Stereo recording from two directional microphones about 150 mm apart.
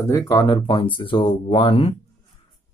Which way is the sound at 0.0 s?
25° left (ahead or behind).